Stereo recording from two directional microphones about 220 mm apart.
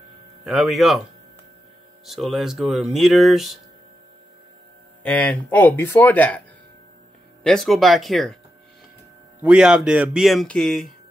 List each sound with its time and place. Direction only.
0.5 s speech: centre (ahead or behind)
2.0 s speech: centre (ahead or behind)
5.0 s speech: 5° left (ahead or behind)
7.4 s speech: centre (ahead or behind)
9.4 s speech: 5° right (ahead or behind)